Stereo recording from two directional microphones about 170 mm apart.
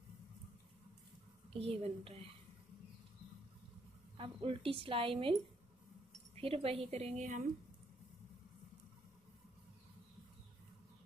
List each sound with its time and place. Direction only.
1.5 s a woman's voice: 35° right (ahead or behind)
4.2 s a woman's voice: 30° right (ahead or behind)
6.3 s a woman's voice: 35° right (ahead or behind)